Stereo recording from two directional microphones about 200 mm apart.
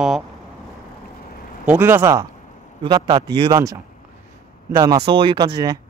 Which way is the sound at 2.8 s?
25° right (ahead or behind).